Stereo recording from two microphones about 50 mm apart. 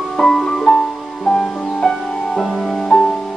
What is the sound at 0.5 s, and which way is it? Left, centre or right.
Music, centre.